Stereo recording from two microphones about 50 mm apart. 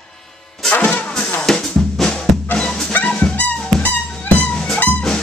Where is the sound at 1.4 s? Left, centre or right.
Centre.